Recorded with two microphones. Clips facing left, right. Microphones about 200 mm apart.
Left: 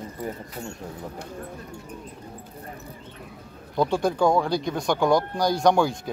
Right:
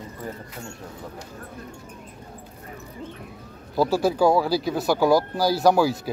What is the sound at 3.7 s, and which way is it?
Speech, 5° right (ahead or behind).